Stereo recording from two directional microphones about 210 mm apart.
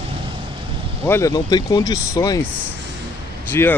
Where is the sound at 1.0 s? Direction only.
15° left (ahead or behind).